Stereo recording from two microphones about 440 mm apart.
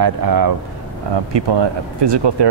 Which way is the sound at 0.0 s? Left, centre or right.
Right.